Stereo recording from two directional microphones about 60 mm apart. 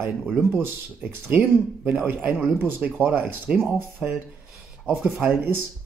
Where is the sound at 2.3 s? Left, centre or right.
Right.